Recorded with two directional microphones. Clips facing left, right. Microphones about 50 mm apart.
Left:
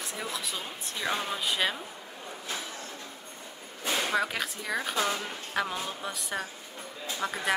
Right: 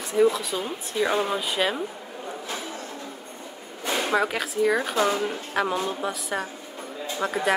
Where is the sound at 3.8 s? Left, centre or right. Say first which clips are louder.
Right 5 dB; centre.